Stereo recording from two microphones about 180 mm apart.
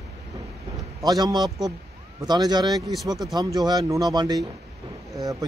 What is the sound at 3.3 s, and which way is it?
Speech, 20° right (ahead or behind).